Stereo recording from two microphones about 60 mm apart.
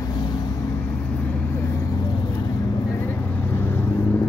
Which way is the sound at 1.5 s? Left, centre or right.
Left.